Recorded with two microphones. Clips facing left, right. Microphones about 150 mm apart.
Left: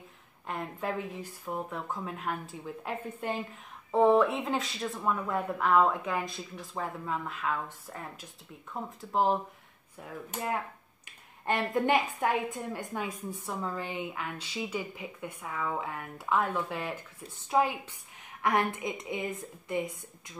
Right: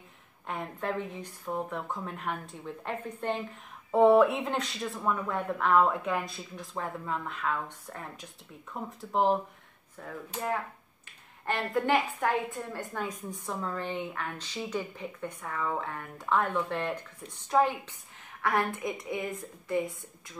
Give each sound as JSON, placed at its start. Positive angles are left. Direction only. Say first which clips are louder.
{"t": 0.5, "sound": "speech", "louder": "right 1 dB", "side_deg": 0}
{"t": 9.1, "sound": "speech", "louder": "right 1 dB", "side_deg": 0}
{"t": 10.0, "sound": "speech", "louder": "right 2 dB", "side_deg": 15}
{"t": 11.4, "sound": "speech", "louder": "left 1 dB", "side_deg": 20}
{"t": 13.5, "sound": "speech", "louder": "right 2 dB", "side_deg": 5}
{"t": 18.4, "sound": "a woman's voice", "louder": "left 1 dB", "side_deg": 20}